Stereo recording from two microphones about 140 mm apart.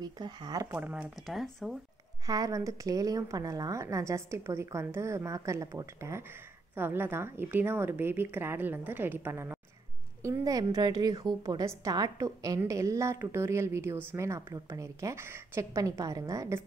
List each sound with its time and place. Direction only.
0.0 s a woman's voice: 30° right (ahead or behind)
0.7 s a woman's voice: 10° right (ahead or behind)
1.2 s speech: centre (ahead or behind)
2.2 s a woman's voice: 25° right (ahead or behind)